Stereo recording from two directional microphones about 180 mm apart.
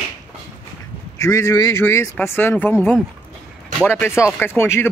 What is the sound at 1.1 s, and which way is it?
A man's voice, 15° left (ahead or behind).